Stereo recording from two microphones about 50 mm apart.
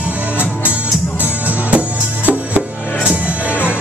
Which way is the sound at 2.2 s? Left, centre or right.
Right.